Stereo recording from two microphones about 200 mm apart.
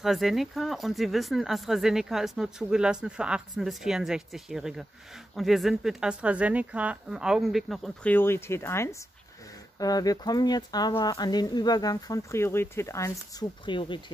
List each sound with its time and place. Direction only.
0.0 s speech: centre (ahead or behind); by 14.1 s 25° left (ahead or behind)